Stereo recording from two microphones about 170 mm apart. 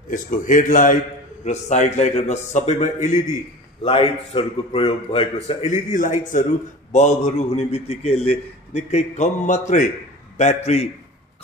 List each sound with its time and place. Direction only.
0.1 s a man's voice: 50° left (ahead or behind)